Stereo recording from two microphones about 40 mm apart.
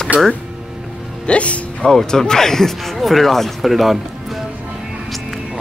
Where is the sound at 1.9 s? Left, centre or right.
Centre.